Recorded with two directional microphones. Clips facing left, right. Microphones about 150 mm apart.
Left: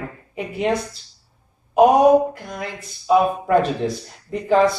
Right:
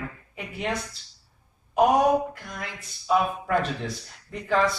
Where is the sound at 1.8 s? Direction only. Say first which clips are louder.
Left 7 dB; 35° left (ahead or behind).